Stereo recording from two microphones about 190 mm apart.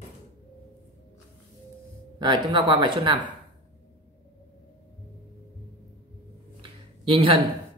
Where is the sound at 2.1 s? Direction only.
25° right (ahead or behind).